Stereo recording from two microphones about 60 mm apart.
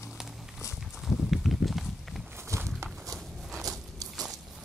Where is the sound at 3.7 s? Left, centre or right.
Right.